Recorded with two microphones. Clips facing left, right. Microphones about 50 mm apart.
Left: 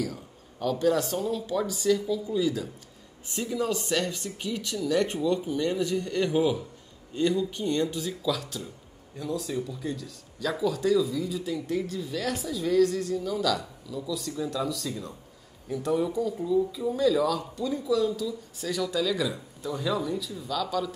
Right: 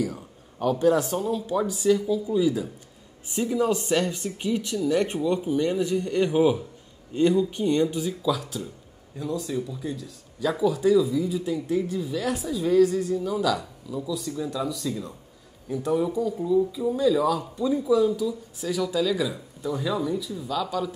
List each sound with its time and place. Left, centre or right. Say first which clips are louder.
0.0 s speech: right 4 dB; centre